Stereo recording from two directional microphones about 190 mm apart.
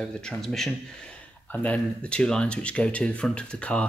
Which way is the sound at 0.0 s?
5° left (ahead or behind).